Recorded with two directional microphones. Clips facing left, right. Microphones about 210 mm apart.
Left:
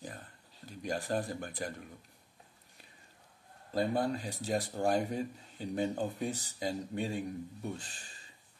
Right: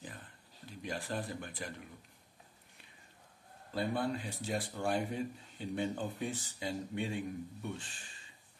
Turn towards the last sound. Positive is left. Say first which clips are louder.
# left 2 dB
turn(degrees=40)  # may be behind; listen again after turning